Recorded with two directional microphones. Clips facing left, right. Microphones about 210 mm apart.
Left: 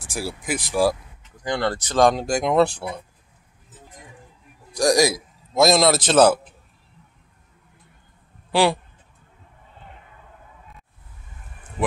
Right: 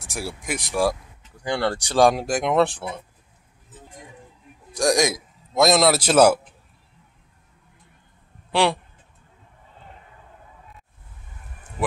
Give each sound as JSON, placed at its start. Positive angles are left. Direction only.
{"t": 0.0, "sound": "a man's voice", "side_deg": 0}
{"t": 1.3, "sound": "speech", "side_deg": -10}
{"t": 4.7, "sound": "a man's voice", "side_deg": 5}
{"t": 8.5, "sound": "speech", "side_deg": 0}